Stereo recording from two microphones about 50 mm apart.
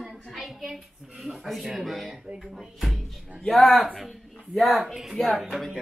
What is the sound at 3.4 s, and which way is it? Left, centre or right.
Speech, centre.